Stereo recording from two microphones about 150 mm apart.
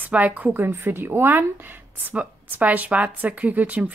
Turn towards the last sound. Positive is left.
turn(degrees=-10)  # may be behind; listen again after turning